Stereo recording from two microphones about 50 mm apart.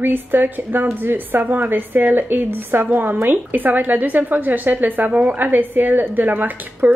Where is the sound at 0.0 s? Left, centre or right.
Right.